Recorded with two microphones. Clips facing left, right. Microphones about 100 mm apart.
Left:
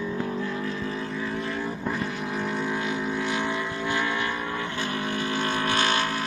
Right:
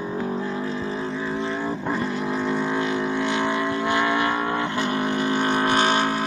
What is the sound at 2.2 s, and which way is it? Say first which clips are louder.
Vehicle: right 4 dB; 90° right.